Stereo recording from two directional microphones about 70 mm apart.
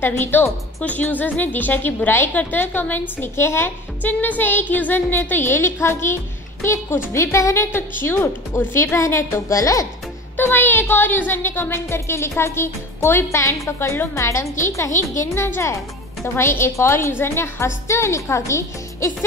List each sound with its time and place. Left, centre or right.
0.0 s a woman's voice: left
4.0 s a woman's voice: left
7.3 s a woman's voice: left
10.3 s a woman's voice: left